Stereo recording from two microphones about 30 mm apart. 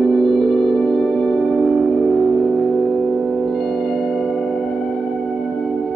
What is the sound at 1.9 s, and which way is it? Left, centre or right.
Music, centre.